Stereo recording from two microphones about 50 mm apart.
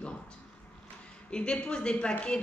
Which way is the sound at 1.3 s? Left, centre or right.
Centre.